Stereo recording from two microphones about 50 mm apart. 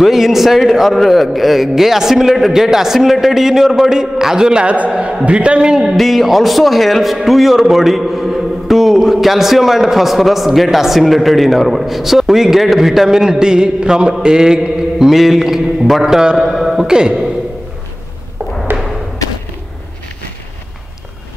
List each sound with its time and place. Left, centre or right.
0.0 s a man's voice: centre
5.9 s a man's voice: centre